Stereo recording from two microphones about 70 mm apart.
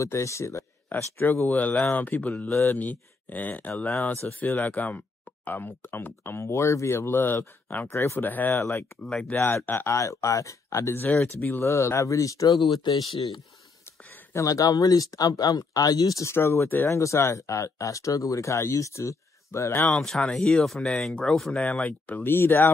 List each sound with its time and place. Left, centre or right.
0.0 s speech: left
0.9 s speech: left
2.5 s speech: left
2.8 s speech: left
9.9 s speech: left
11.0 s speech: left
11.5 s speech: left
12.8 s speech: left
14.3 s speech: left
16.3 s speech: left
19.9 s speech: centre
20.9 s speech: centre
21.5 s speech: centre